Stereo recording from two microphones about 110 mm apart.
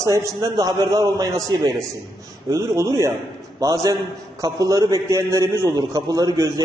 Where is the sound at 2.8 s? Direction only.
30° right (ahead or behind).